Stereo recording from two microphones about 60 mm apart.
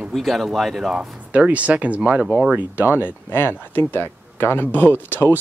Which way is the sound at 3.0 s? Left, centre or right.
Left.